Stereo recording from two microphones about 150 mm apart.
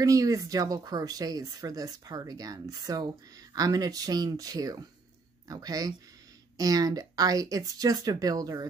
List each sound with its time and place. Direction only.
0.0 s speech: 20° right (ahead or behind)